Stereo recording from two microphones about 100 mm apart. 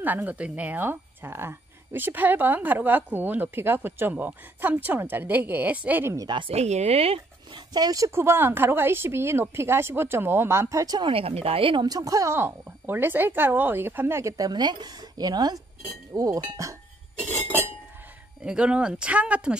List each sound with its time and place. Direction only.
0.0 s a woman's voice: 15° right (ahead or behind)
6.1 s a woman's voice: 50° right (ahead or behind)
6.5 s speech: 90° right
7.5 s a woman's voice: 45° right (ahead or behind)
11.0 s speech: 65° right (ahead or behind)
11.8 s a woman's voice: 40° right (ahead or behind)
14.3 s a woman's voice: 40° right (ahead or behind)
18.4 s speech: 10° right (ahead or behind)